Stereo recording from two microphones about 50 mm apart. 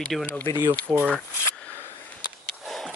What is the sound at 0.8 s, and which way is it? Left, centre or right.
Speech, right.